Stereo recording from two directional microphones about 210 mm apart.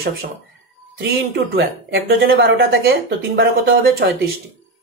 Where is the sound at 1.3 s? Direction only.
50° right (ahead or behind).